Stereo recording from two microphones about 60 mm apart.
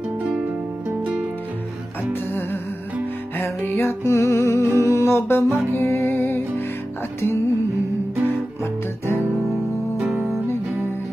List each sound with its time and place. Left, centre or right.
3.6 s music: left
4.1 s music: left
4.7 s humming: left
5.8 s music: left
7.2 s music: left
9.1 s music: right
9.9 s music: centre